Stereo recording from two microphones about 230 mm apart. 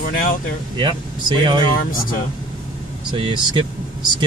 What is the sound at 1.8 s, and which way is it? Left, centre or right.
Speech, left.